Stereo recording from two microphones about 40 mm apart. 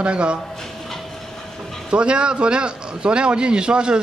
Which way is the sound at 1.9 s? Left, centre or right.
Right.